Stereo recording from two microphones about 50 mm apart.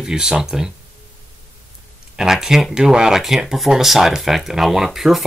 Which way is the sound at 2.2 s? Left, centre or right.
Centre.